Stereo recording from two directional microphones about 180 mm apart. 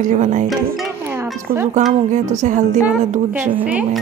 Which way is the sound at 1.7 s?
40° right (ahead or behind).